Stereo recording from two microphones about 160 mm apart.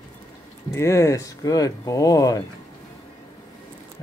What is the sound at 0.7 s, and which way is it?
Speech, 20° left (ahead or behind).